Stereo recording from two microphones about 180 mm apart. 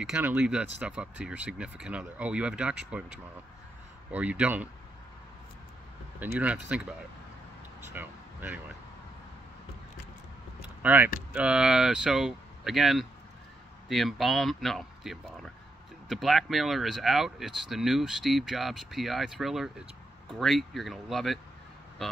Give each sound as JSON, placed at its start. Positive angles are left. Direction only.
{"t": 0.0, "sound": "speech", "side_deg": -5}
{"t": 4.1, "sound": "speech", "side_deg": -5}
{"t": 6.1, "sound": "speech", "side_deg": -10}
{"t": 7.9, "sound": "speech", "side_deg": -10}
{"t": 10.8, "sound": "speech", "side_deg": -10}